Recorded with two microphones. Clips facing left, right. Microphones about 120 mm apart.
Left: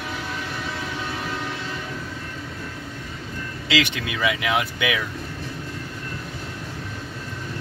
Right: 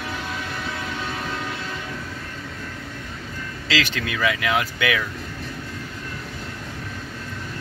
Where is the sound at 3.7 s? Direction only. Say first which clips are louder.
Left 1 dB; 20° left (ahead or behind).